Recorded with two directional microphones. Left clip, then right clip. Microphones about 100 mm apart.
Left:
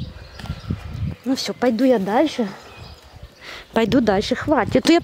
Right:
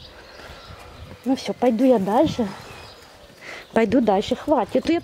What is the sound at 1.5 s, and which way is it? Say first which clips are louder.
A woman's voice: even; 50° left (ahead or behind).